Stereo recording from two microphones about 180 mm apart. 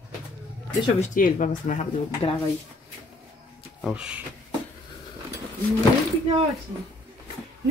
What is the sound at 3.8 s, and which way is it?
Speech, 5° right (ahead or behind).